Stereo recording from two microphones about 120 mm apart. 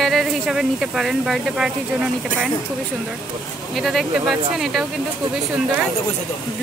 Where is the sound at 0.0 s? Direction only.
5° right (ahead or behind).